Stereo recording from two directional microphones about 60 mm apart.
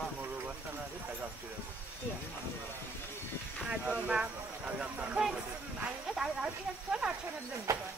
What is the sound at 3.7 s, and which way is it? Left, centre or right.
Speech, right.